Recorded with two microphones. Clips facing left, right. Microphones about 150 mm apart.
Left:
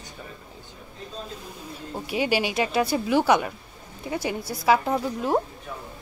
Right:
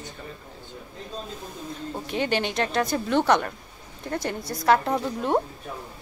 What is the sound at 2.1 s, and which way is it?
A woman's voice, 10° left (ahead or behind).